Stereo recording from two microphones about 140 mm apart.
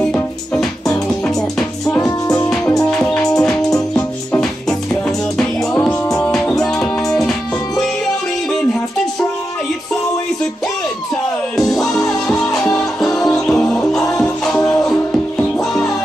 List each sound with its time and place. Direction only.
0.0 s music: 5° left (ahead or behind)
2.2 s music: 25° left (ahead or behind)
3.0 s music: 5° left (ahead or behind)
6.2 s music: 5° left (ahead or behind)
11.5 s music: centre (ahead or behind)